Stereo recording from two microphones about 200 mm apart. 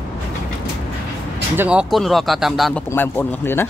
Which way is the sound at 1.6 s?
5° right (ahead or behind).